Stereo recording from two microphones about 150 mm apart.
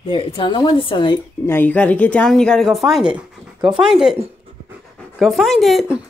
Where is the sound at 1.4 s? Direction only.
15° left (ahead or behind); by 6.0 s 5° right (ahead or behind).